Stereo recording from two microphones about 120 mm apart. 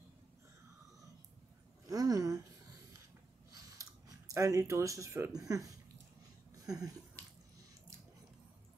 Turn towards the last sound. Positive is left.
turn(degrees=-30)  # may be behind; listen again after turning